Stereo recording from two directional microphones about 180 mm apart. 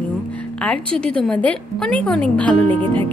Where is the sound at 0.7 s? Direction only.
5° left (ahead or behind).